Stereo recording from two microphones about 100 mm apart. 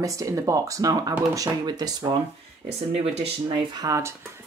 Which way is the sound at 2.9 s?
90° right.